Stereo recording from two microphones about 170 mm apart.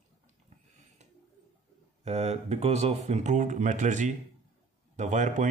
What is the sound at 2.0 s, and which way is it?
Speech, 40° right (ahead or behind).